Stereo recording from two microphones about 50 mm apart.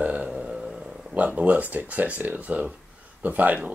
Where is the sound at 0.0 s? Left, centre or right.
Right.